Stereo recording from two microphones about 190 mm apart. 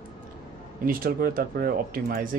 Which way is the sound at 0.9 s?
50° right (ahead or behind).